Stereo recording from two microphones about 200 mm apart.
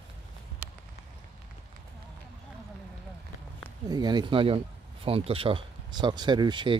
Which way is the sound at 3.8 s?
20° right (ahead or behind).